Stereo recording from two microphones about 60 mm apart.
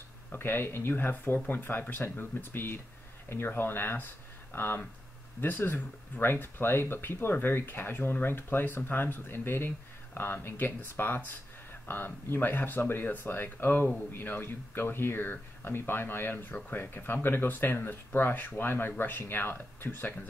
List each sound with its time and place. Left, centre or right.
0.3 s speech: left